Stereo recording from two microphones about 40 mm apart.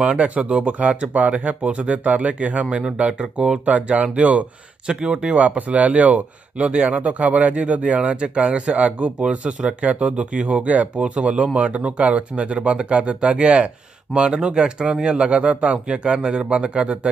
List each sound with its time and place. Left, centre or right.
0.0 s speech: right
3.6 s speech: right
5.0 s speech: centre
5.3 s speech: right
5.6 s speech: right
6.6 s speech: right